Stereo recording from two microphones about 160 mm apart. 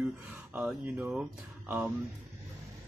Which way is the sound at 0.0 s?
5° right (ahead or behind).